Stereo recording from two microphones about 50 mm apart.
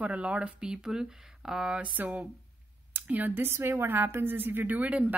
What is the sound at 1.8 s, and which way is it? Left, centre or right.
Speech, right.